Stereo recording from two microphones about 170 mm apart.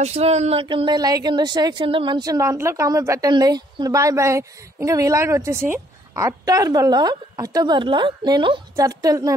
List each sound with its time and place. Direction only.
0.0 s speech: 40° right (ahead or behind); by 9.3 s 20° right (ahead or behind)